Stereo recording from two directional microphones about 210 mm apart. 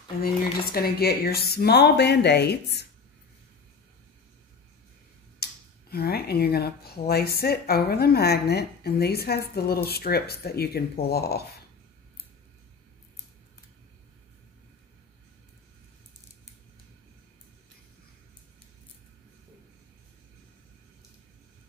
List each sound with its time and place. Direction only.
0.2 s speech: 45° left (ahead or behind)
5.4 s speech: 50° left (ahead or behind)